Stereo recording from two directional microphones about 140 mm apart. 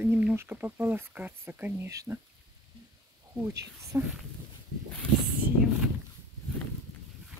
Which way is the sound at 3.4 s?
20° right (ahead or behind).